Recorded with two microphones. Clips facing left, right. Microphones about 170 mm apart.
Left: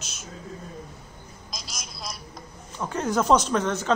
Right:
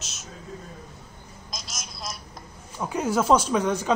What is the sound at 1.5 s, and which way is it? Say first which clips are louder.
Telephone: right 1 dB; centre (ahead or behind).